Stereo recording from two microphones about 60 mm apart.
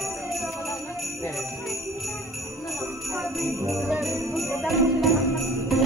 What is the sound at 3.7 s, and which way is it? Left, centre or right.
Jingle bell, centre.